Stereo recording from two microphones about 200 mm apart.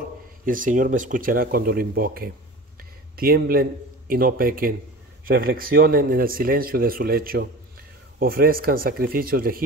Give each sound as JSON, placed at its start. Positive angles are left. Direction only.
{"t": 0.5, "sound": "speech", "side_deg": -40}
{"t": 2.8, "sound": "a sound", "side_deg": -50}
{"t": 4.1, "sound": "speech", "side_deg": -45}